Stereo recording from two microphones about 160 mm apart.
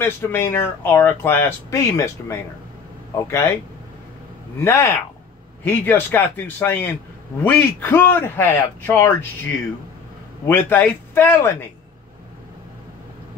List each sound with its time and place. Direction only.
0.0 s speech: 15° left (ahead or behind)
4.6 s speech: 15° left (ahead or behind)